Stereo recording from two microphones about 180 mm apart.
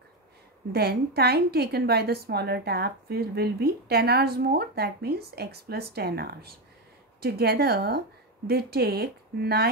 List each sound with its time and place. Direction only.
0.7 s a woman's voice: 60° right (ahead or behind)